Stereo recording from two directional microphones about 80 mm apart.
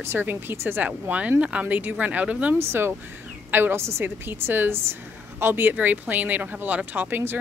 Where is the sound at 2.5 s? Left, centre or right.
Right.